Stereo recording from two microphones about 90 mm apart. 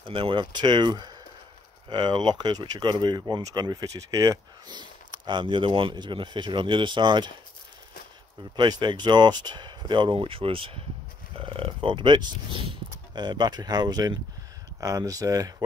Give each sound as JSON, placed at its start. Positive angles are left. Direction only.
{"t": 0.0, "sound": "speech", "side_deg": -80}
{"t": 4.7, "sound": "speech", "side_deg": -55}
{"t": 8.5, "sound": "speech", "side_deg": -50}